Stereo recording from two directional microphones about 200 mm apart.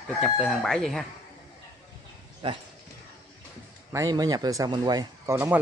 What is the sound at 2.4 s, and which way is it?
Speech, 25° right (ahead or behind).